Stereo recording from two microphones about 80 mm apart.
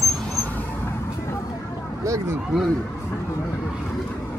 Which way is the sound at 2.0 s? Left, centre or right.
Right.